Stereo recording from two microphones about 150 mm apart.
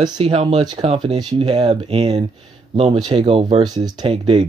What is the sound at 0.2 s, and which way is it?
Speech, 45° right (ahead or behind).